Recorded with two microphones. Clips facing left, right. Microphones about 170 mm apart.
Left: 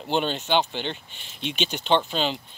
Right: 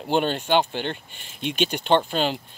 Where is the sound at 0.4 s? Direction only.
10° right (ahead or behind).